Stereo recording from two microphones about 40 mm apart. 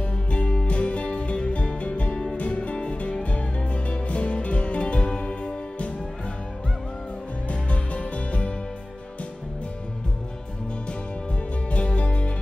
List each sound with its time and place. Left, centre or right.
0.0 s music: left
7.4 s music: left
11.7 s music: left